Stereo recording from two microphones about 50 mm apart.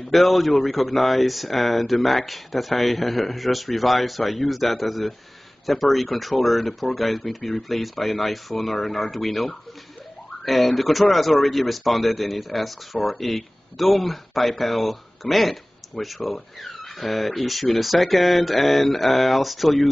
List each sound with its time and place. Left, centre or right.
0.1 s speech: centre